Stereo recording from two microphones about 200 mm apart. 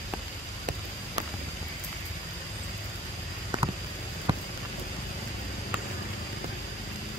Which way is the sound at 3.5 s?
20° right (ahead or behind).